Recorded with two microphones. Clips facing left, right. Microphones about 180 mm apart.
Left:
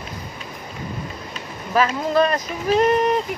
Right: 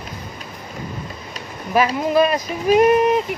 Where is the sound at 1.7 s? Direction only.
15° right (ahead or behind).